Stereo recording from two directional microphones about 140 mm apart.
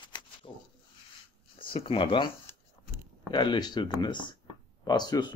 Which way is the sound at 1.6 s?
40° left (ahead or behind).